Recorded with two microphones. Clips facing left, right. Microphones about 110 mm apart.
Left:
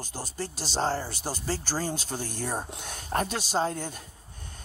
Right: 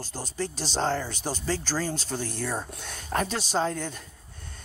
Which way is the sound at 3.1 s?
45° left (ahead or behind).